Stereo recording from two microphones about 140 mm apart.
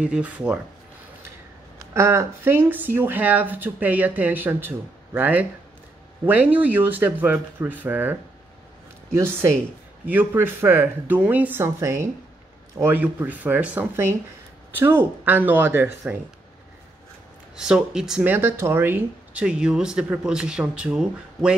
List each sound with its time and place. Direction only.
0.0 s speech: 10° right (ahead or behind)
2.0 s speech: 20° right (ahead or behind)
17.6 s speech: 5° right (ahead or behind)
18.2 s speech: 15° right (ahead or behind)